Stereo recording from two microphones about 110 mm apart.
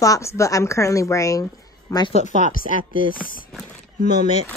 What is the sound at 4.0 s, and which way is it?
Speech, 90° left.